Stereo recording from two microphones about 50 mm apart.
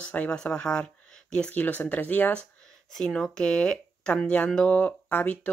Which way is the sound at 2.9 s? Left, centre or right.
Centre.